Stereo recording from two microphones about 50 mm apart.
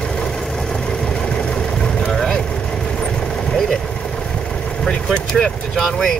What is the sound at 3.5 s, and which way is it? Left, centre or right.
Vehicle, centre.